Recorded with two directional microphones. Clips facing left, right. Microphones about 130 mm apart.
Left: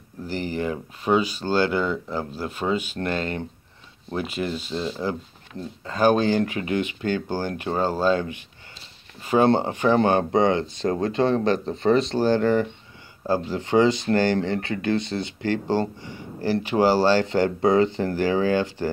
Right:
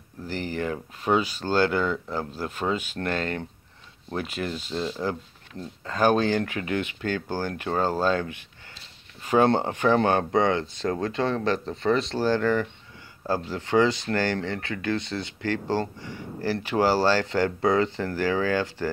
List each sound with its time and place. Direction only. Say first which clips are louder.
0.3 s speech: left 2 dB; 15° left (ahead or behind)